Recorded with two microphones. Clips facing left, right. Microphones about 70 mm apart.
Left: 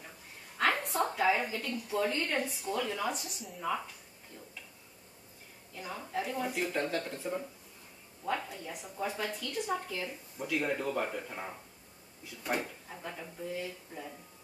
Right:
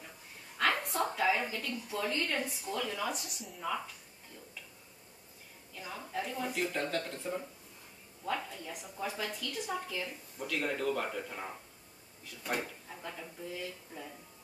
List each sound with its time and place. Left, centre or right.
0.6 s a sound: centre
2.0 s speech: centre
5.9 s speech: centre